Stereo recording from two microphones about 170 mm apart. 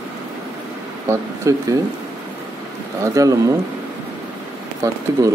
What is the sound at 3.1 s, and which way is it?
Speech, 20° right (ahead or behind).